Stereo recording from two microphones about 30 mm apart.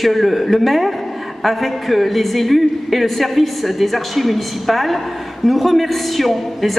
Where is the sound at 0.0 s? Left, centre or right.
Centre.